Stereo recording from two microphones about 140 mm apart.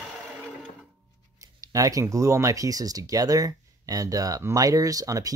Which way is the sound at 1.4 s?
25° right (ahead or behind).